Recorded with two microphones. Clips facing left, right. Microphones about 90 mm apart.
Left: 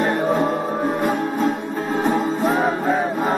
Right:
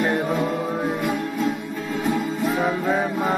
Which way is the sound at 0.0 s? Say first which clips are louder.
Left 3 dB; 40° left (ahead or behind).